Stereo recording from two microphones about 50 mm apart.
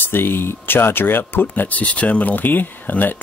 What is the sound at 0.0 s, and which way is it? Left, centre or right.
Speech, left.